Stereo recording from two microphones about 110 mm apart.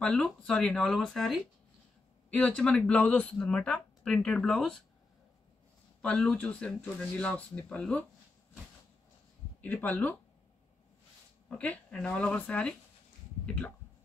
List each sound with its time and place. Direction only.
0.0 s speech: 10° left (ahead or behind)
6.0 s speech: 10° left (ahead or behind)
9.6 s speech: 15° left (ahead or behind)
11.4 s speech: 10° left (ahead or behind)